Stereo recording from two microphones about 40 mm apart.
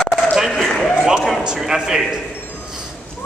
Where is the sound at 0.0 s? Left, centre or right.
Centre.